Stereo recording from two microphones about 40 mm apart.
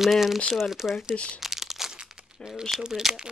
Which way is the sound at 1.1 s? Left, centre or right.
Left.